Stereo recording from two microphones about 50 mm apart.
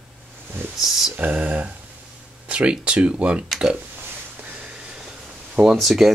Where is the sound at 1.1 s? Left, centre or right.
Right.